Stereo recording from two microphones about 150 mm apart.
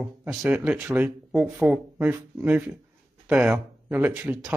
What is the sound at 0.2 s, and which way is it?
Speech, 10° right (ahead or behind).